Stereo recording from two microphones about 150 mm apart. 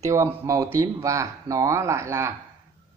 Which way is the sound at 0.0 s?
20° right (ahead or behind).